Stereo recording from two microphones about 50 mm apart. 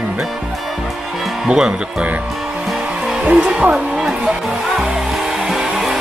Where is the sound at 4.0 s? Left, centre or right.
Centre.